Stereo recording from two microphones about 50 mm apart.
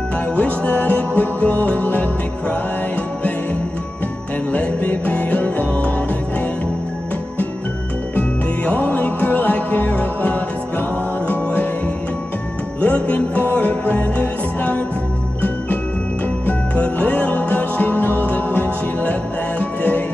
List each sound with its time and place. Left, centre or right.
0.4 s music: left
4.5 s music: left
8.2 s music: left
12.8 s music: left
16.4 s music: left